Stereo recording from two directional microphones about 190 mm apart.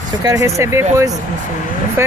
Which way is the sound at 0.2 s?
15° right (ahead or behind).